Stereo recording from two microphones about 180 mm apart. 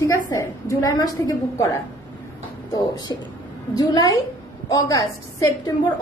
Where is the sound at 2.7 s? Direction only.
25° left (ahead or behind).